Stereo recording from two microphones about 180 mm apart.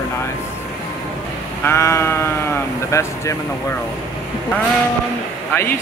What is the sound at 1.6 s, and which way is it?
Speech, 15° left (ahead or behind).